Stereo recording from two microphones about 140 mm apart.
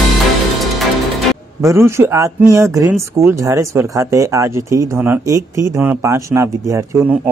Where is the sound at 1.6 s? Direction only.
20° right (ahead or behind).